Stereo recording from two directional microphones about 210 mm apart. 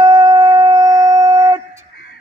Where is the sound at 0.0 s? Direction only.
20° right (ahead or behind).